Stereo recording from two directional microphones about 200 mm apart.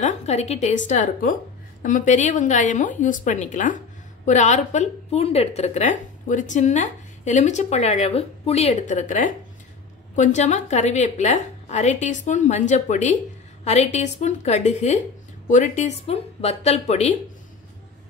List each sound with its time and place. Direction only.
0.0 s a woman's voice: 35° left (ahead or behind)